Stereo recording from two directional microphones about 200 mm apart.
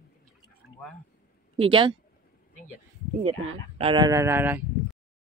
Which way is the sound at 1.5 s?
25° right (ahead or behind).